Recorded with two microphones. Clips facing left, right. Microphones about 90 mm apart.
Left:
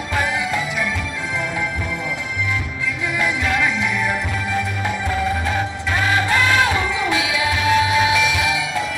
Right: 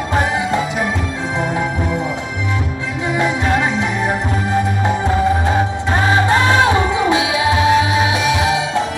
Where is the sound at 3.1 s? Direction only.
35° right (ahead or behind).